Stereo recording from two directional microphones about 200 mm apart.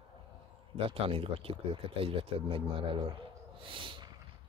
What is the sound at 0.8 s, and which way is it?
Speech, 25° right (ahead or behind).